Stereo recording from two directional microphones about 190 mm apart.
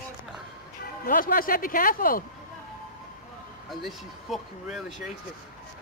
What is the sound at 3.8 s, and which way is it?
Speech, centre (ahead or behind).